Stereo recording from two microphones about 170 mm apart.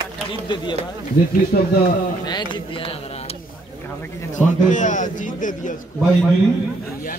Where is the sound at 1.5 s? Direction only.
55° left (ahead or behind).